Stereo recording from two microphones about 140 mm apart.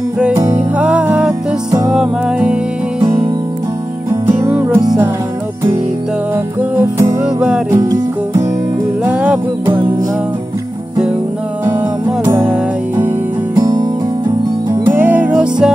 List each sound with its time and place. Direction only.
0.7 s music: 5° right (ahead or behind)
4.1 s music: 15° right (ahead or behind)
6.3 s music: 15° right (ahead or behind)
7.2 s music: 5° right (ahead or behind)
7.7 s music: 25° right (ahead or behind)
9.0 s music: 10° right (ahead or behind)
12.4 s music: 10° right (ahead or behind)
13.6 s music: 30° right (ahead or behind)
14.9 s music: 10° right (ahead or behind)